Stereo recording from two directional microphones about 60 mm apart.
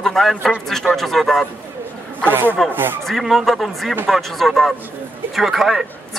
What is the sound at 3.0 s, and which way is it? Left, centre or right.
Speech, centre.